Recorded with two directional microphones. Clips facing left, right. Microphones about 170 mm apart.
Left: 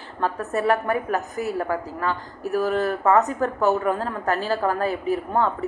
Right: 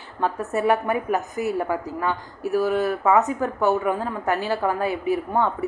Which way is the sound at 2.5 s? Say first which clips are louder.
Right 1 dB; 5° right (ahead or behind).